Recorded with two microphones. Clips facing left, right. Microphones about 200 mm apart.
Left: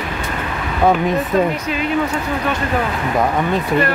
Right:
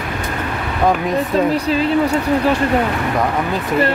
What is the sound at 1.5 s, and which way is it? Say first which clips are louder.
Speech: right 5 dB; 30° right (ahead or behind).